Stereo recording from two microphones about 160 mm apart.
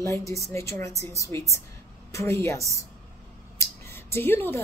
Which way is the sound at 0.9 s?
45° right (ahead or behind).